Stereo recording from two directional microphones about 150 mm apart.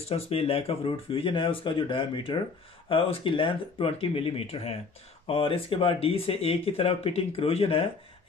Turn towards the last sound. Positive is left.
turn(degrees=40)  # may be behind; listen again after turning